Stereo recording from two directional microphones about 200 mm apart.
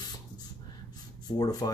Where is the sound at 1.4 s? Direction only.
20° left (ahead or behind).